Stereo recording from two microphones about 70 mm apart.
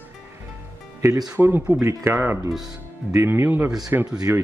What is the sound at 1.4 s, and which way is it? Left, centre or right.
Speech, centre.